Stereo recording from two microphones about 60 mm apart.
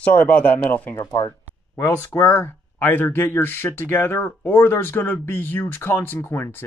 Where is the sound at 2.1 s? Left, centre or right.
Left.